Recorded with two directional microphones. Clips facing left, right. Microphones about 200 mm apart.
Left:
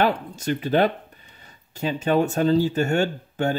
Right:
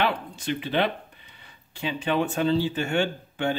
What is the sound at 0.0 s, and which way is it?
Speech, 45° left (ahead or behind).